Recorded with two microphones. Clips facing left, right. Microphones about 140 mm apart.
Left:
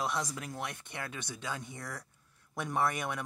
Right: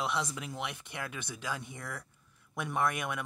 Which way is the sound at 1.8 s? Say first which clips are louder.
Right 1 dB; 15° left (ahead or behind).